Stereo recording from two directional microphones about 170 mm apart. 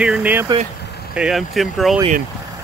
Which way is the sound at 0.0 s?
5° right (ahead or behind).